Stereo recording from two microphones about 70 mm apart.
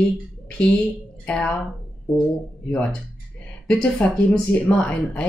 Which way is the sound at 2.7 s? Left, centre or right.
Centre.